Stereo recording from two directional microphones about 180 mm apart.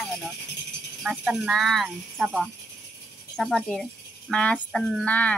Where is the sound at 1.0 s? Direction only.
5° right (ahead or behind).